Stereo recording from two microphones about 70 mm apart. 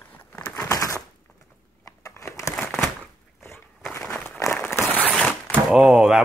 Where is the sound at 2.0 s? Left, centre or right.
Left.